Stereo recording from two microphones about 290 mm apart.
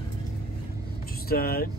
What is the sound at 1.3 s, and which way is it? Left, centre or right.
Speech, left.